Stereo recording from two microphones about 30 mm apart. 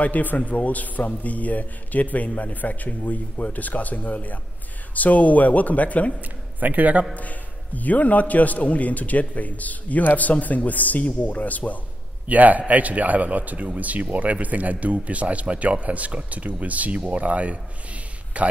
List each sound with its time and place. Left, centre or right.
0.0 s a man's voice: left
6.6 s a man's voice: right
7.2 s a man's voice: left
12.3 s a man's voice: right